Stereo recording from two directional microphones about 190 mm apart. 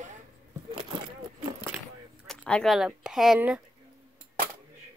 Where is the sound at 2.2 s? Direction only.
5° left (ahead or behind).